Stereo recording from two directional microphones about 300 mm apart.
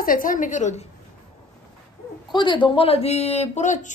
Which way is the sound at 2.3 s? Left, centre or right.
Centre.